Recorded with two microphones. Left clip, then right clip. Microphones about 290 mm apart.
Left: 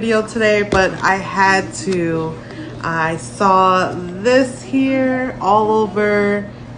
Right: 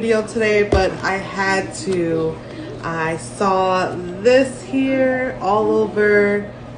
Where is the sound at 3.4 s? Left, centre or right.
Centre.